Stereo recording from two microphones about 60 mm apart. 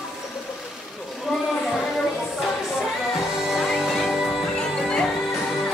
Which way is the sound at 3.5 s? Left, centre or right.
Centre.